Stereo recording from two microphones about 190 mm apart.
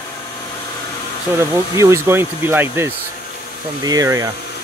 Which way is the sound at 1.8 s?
15° right (ahead or behind).